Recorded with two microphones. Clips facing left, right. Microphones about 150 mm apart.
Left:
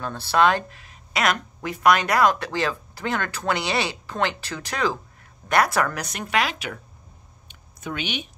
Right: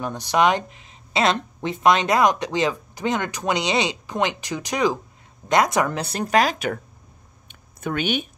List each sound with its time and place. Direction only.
0.0 s a woman's voice: 15° right (ahead or behind)
6.0 s speech: 35° right (ahead or behind)
7.4 s a sound: 50° right (ahead or behind)